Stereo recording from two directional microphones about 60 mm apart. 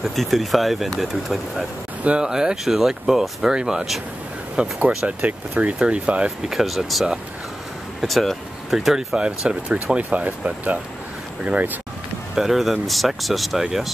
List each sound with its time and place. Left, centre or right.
0.0 s speech: centre
2.0 s speech: centre
4.6 s speech: right
6.5 s speech: centre
8.7 s speech: centre; by 11.8 s right
12.4 s speech: centre